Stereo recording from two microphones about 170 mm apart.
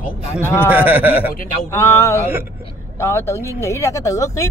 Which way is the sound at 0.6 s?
10° right (ahead or behind).